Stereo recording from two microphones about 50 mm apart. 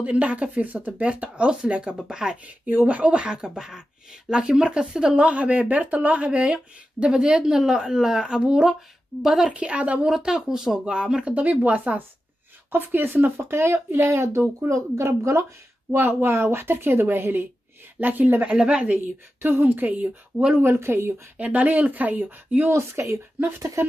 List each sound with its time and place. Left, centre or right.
0.0 s speech: right
2.7 s speech: right; by 9.6 s centre
9.6 s speech: right
10.0 s speech: centre
11.3 s speech: right
12.7 s speech: right
15.9 s speech: right
18.6 s speech: centre
18.9 s speech: right
20.5 s speech: right
21.4 s speech: right
22.7 s speech: right